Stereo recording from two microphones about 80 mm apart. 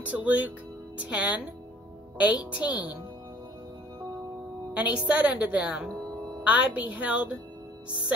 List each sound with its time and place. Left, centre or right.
0.0 s a woman's voice: centre
2.5 s a woman's voice: centre
4.7 s a woman's voice: centre